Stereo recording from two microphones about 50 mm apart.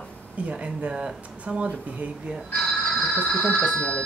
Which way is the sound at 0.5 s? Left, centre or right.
Right.